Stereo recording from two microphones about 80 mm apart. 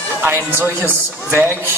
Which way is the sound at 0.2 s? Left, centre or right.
Right.